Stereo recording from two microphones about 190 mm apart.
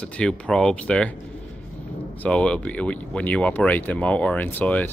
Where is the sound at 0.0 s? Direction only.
5° left (ahead or behind).